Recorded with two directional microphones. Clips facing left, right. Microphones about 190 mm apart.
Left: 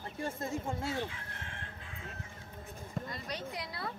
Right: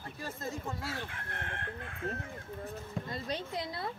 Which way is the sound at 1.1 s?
55° right (ahead or behind).